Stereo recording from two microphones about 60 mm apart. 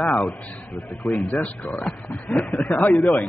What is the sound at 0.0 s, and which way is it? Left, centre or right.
A man's voice, left.